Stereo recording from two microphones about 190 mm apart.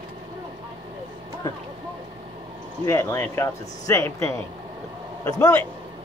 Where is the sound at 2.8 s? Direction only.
15° left (ahead or behind).